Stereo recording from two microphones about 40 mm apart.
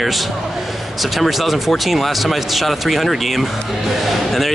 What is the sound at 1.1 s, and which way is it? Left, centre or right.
Speech, centre.